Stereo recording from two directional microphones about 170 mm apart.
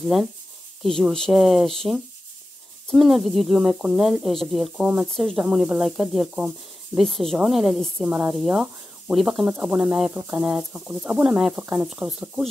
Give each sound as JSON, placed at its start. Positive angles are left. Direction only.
{"t": 0.8, "sound": "speech", "side_deg": 0}